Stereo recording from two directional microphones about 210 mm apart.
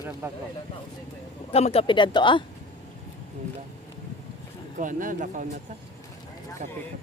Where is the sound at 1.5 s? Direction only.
30° left (ahead or behind).